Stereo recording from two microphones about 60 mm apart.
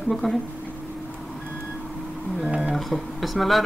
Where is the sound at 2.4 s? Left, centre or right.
Right.